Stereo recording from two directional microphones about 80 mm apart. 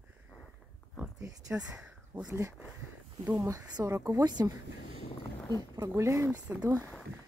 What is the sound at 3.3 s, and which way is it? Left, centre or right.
Speech, right.